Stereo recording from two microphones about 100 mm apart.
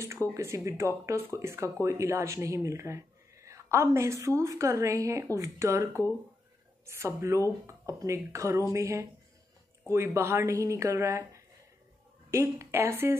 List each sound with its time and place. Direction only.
0.0 s speech: 30° right (ahead or behind)